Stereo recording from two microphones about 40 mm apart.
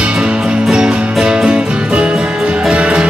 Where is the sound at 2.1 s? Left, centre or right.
Centre.